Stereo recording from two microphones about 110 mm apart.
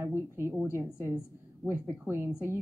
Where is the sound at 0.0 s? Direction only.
25° right (ahead or behind).